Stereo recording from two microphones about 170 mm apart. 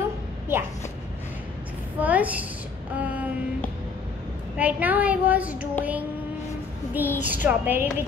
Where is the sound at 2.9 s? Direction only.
10° right (ahead or behind).